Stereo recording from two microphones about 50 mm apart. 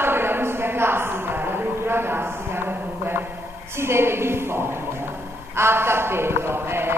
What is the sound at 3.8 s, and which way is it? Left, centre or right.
Speech, right.